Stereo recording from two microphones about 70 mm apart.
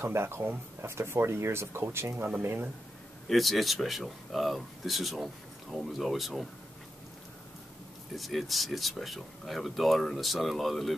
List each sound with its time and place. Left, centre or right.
0.0 s speech: right
3.3 s speech: centre
8.2 s speech: centre